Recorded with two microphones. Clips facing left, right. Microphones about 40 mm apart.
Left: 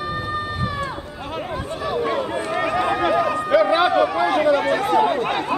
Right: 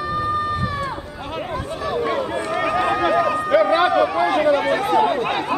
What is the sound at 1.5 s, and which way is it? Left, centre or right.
Chatter, centre.